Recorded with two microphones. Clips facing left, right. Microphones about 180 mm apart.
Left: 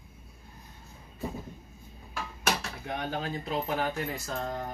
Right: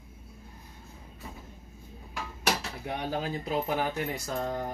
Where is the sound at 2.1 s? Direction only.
10° right (ahead or behind).